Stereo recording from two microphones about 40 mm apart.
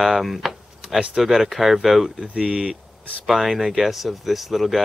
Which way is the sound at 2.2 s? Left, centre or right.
Right.